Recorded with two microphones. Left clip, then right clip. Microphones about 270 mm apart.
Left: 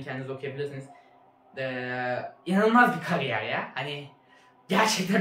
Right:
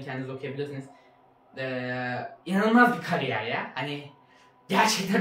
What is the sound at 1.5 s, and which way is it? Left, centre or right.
Speech, centre.